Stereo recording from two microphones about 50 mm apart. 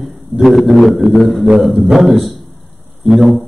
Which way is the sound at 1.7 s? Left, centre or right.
Centre.